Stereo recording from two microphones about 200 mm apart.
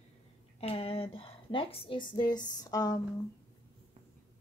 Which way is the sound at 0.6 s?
30° left (ahead or behind).